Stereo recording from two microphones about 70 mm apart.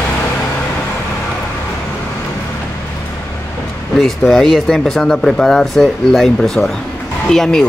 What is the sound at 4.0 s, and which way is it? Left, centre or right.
Speech, centre.